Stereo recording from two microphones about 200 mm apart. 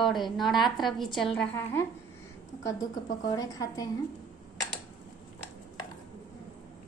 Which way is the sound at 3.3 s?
20° left (ahead or behind).